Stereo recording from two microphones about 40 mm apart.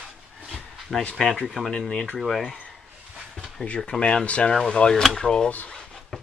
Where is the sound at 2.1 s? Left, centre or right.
Centre.